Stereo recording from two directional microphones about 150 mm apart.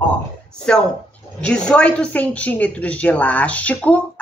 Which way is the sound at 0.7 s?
5° left (ahead or behind).